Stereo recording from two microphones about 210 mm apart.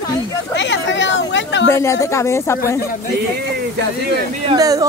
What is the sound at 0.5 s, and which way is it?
Speech, 60° left (ahead or behind).